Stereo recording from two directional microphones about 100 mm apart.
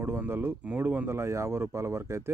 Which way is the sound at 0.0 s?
25° right (ahead or behind).